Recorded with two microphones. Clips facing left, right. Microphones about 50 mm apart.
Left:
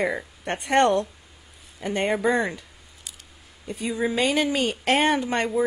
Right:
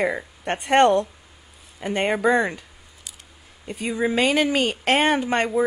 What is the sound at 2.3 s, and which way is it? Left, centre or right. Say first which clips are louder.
Speech: right 3 dB; right.